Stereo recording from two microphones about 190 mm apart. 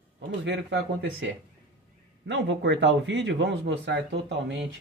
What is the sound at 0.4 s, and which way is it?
Speech, 70° right (ahead or behind).